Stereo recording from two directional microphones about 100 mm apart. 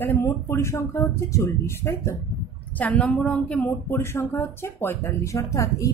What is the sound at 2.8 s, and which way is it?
Speech, 15° left (ahead or behind).